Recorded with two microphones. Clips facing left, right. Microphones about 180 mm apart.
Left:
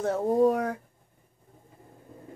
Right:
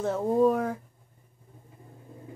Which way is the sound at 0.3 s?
40° left (ahead or behind).